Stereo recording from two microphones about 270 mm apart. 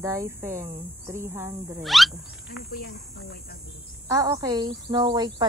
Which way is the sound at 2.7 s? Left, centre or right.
Left.